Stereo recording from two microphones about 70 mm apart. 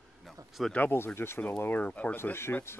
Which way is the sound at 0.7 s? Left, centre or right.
Left.